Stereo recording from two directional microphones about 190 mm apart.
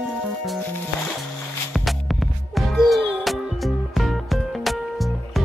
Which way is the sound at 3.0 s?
30° right (ahead or behind).